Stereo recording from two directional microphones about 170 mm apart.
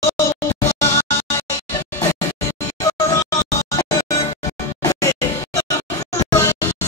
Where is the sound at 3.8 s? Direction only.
20° left (ahead or behind).